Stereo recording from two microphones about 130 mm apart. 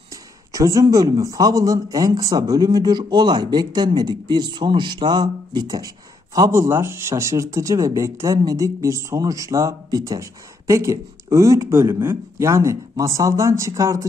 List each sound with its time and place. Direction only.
0.1 s a man's voice: 25° right (ahead or behind)